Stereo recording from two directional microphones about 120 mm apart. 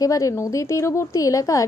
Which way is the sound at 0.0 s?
30° left (ahead or behind).